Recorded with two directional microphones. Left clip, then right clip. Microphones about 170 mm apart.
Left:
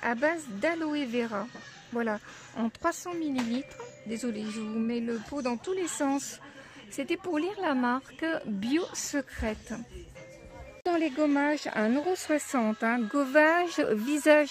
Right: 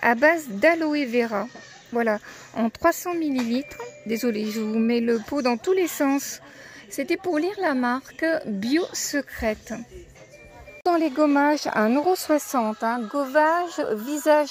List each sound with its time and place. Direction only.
0.0 s a woman's voice: 25° right (ahead or behind)
10.8 s a woman's voice: 20° right (ahead or behind)
11.7 s a woman's voice: 10° right (ahead or behind)
12.5 s a woman's voice: 10° left (ahead or behind)